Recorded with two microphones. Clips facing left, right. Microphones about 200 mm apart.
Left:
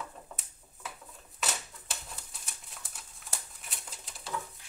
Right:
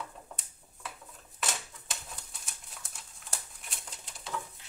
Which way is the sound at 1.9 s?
Centre (ahead or behind).